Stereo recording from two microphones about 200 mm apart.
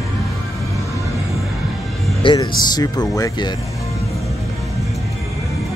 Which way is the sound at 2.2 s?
20° left (ahead or behind).